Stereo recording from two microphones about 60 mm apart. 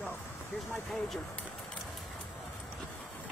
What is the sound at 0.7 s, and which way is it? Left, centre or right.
Speech, centre.